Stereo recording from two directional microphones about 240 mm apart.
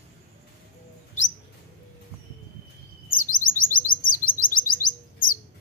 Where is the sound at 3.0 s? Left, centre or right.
Left.